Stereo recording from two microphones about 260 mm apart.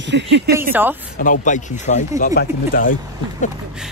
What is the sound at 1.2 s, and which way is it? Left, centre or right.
Speech, left.